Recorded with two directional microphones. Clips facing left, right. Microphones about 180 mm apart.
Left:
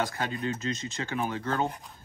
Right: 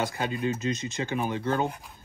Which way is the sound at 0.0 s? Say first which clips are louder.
Right 2 dB; 15° right (ahead or behind).